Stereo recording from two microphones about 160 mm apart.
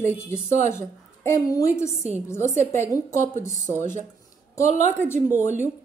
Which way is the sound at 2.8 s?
20° left (ahead or behind).